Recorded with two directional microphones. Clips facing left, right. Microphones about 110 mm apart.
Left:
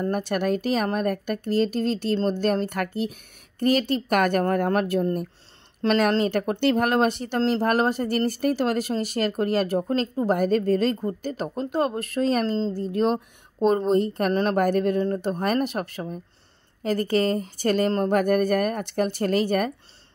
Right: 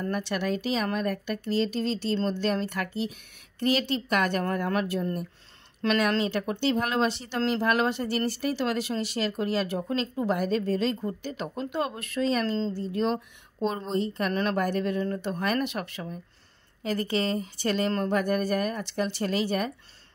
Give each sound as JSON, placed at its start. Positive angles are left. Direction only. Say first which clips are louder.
{"t": 0.0, "sound": "a woman's voice", "louder": "left 5 dB", "side_deg": 45}